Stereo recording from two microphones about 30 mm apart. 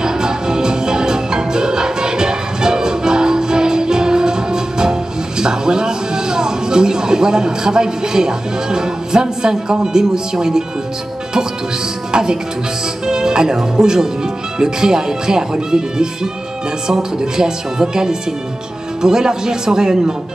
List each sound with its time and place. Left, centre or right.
0.0 s music: right
5.4 s speech: right
12.1 s speech: right